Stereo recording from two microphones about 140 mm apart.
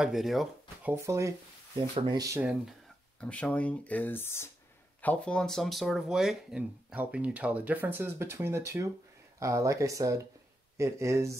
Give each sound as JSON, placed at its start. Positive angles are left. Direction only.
{"t": 0.0, "sound": "speech", "side_deg": 0}
{"t": 0.8, "sound": "speech", "side_deg": -20}
{"t": 2.0, "sound": "speech", "side_deg": -30}
{"t": 3.2, "sound": "speech", "side_deg": 10}